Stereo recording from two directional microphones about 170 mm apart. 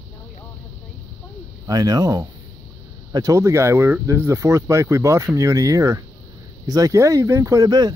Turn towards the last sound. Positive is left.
turn(degrees=-20)  # may be behind; listen again after turning